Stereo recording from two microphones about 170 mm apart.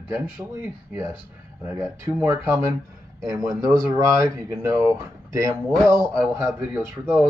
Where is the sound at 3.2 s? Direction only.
20° right (ahead or behind).